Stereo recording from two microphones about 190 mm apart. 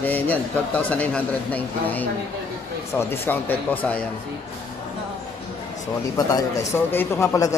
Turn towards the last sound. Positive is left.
turn(degrees=15)  # may be behind; listen again after turning